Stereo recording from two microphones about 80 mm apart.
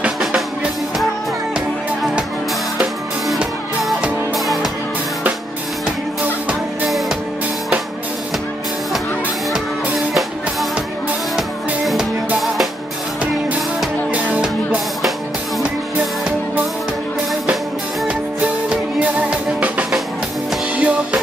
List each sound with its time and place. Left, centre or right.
11.3 s music: centre
14.1 s music: centre
18.7 s music: centre